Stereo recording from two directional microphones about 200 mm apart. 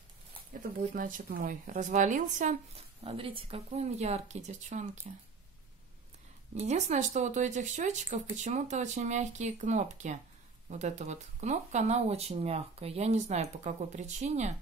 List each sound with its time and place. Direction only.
0.5 s speech: 40° right (ahead or behind)
6.6 s speech: 35° right (ahead or behind)